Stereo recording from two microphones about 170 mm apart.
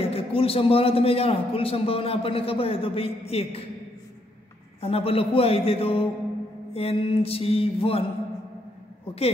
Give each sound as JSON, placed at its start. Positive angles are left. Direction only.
{"t": 0.0, "sound": "a man's voice", "side_deg": 35}
{"t": 4.8, "sound": "a man's voice", "side_deg": 35}